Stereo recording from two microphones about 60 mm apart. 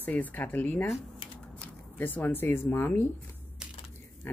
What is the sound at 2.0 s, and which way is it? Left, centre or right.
Speech, left.